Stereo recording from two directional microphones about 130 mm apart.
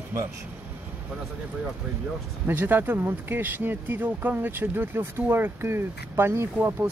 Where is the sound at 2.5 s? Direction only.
15° right (ahead or behind).